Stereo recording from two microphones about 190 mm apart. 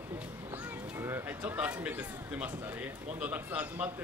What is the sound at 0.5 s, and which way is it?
Speech, 10° right (ahead or behind).